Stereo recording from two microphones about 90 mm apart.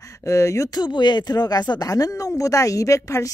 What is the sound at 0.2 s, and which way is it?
Speech, 35° left (ahead or behind).